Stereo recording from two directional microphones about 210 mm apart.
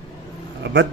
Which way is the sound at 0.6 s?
55° right (ahead or behind).